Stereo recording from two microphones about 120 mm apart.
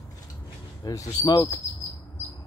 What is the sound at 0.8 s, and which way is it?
Speech, 30° left (ahead or behind).